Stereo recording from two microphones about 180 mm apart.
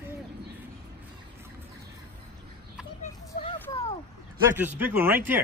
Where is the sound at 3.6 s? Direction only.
15° left (ahead or behind).